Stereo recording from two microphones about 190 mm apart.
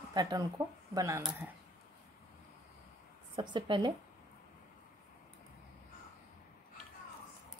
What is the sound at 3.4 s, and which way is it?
Speech, 25° right (ahead or behind).